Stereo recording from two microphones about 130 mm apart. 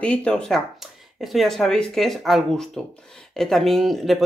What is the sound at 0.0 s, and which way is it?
A woman's voice, 10° left (ahead or behind).